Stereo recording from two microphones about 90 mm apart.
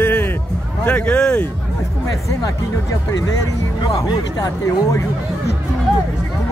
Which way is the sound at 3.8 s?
50° left (ahead or behind).